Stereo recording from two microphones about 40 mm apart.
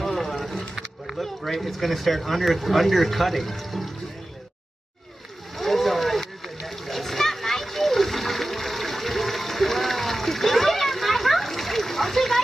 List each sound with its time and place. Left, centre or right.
0.0 s vehicle: centre
1.0 s speech: centre
5.6 s a sound: centre